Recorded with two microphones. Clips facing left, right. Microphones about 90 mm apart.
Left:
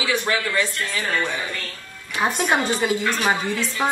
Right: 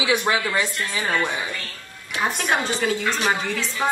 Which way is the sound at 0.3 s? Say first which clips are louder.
Even; 15° right (ahead or behind).